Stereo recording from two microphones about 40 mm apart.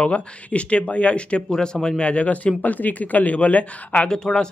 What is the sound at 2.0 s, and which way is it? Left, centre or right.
Speech, left.